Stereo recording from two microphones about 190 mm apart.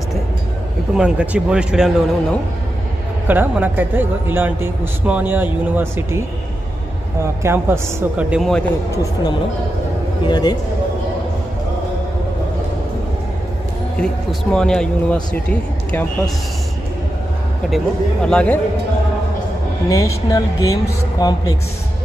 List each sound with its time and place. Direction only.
0.9 s speech: 5° right (ahead or behind)
3.3 s speech: 10° right (ahead or behind)
7.4 s speech: 15° right (ahead or behind)
8.9 s a man's voice: 15° left (ahead or behind)
13.9 s speech: 5° left (ahead or behind)
17.6 s speech: centre (ahead or behind)
19.9 s speech: 20° left (ahead or behind)